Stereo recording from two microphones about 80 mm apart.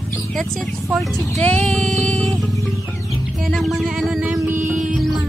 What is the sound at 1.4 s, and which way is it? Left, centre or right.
Music, centre.